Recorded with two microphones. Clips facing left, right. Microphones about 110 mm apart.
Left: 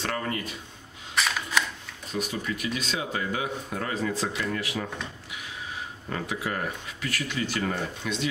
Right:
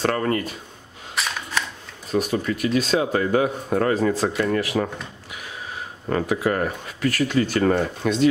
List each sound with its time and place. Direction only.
0.0 s speech: 50° right (ahead or behind)
1.1 s single-lens reflex camera: centre (ahead or behind)
2.1 s speech: 50° right (ahead or behind)
6.0 s speech: 55° right (ahead or behind)